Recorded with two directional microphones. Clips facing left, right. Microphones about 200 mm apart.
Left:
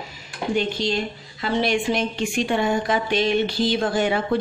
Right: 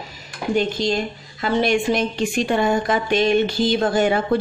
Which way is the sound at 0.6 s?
45° right (ahead or behind).